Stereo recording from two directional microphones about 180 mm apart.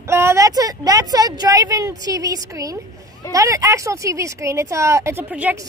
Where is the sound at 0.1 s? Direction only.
15° right (ahead or behind).